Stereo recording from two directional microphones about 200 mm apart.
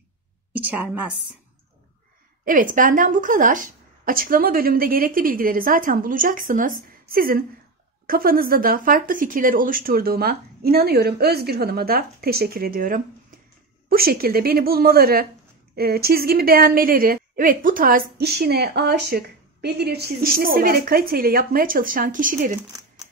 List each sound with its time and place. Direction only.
0.6 s a woman's voice: 5° right (ahead or behind)
2.4 s a woman's voice: 40° right (ahead or behind)